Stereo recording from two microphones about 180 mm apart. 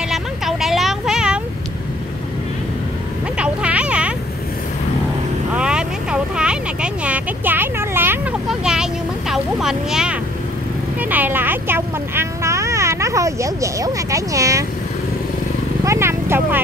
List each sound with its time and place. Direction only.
0.1 s vehicle: centre (ahead or behind)
3.3 s vehicle: 5° right (ahead or behind)
5.5 s a sound: 5° right (ahead or behind)
9.3 s vehicle: 5° right (ahead or behind)
15.8 s clip-clop: 15° right (ahead or behind)